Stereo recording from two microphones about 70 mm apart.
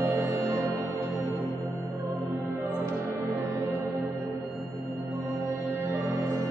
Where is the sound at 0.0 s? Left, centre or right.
Right.